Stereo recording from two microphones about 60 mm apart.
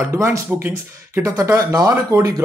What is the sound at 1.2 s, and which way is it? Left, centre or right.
Speech, right.